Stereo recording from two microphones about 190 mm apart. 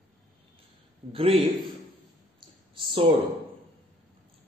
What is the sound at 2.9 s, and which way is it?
Speech, 30° right (ahead or behind).